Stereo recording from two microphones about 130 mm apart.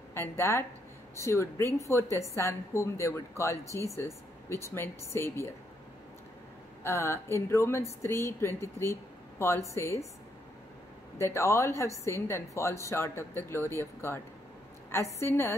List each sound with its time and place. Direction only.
0.1 s a woman's voice: 20° left (ahead or behind)
6.8 s a woman's voice: 20° left (ahead or behind)
11.1 s a woman's voice: 20° left (ahead or behind)